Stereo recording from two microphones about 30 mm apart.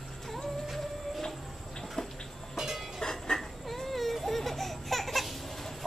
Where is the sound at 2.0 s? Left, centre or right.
Left.